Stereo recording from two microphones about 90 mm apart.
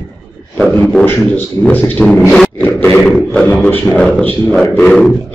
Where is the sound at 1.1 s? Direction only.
20° left (ahead or behind).